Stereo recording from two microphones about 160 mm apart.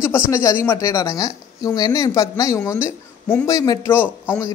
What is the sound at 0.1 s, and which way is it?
A man's voice, 20° left (ahead or behind).